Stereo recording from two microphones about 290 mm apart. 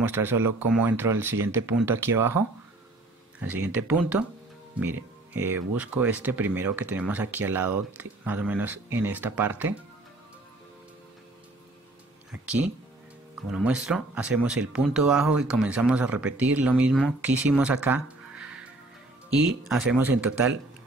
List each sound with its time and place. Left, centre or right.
0.0 s speech: centre
3.3 s speech: centre
12.4 s speech: centre
19.9 s speech: centre